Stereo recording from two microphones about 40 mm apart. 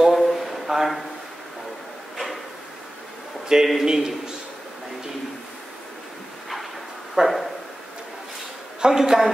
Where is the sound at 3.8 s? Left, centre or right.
Centre.